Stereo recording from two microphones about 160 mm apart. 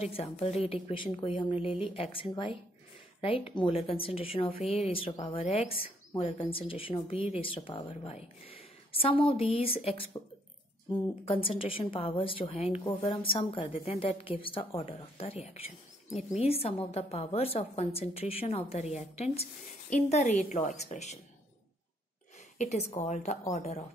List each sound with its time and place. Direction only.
0.0 s a woman's voice: 40° left (ahead or behind)
22.6 s a woman's voice: 45° left (ahead or behind)